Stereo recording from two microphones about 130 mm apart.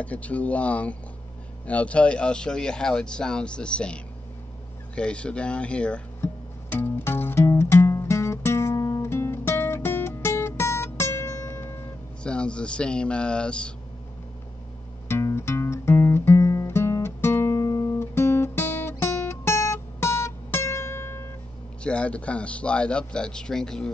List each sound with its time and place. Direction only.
0.0 s speech: 10° left (ahead or behind)
6.2 s music: 15° left (ahead or behind)
12.2 s speech: 10° left (ahead or behind)
15.0 s music: 20° left (ahead or behind)
21.8 s speech: 10° left (ahead or behind)